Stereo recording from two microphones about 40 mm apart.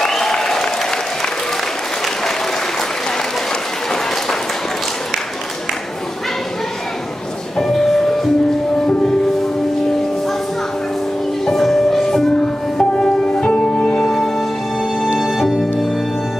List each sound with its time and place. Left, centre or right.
0.0 s applause: centre
7.5 s music: centre
11.5 s music: centre
12.4 s music: centre
13.9 s music: centre